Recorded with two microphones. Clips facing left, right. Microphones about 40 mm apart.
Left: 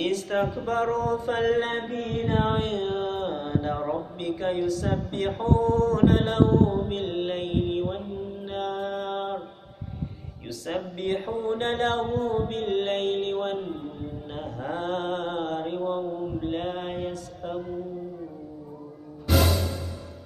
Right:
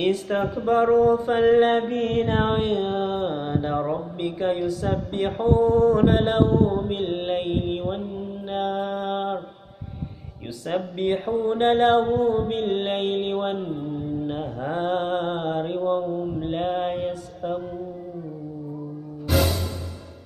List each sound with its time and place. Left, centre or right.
0.3 s speech: centre
0.7 s mantra: centre
1.7 s mantra: right
2.5 s mantra: centre
7.6 s mantra: centre
8.5 s mantra: centre
11.0 s mantra: centre
13.6 s mantra: centre
14.3 s mantra: centre